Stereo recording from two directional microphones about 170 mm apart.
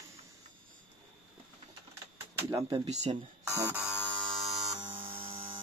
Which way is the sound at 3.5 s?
15° right (ahead or behind).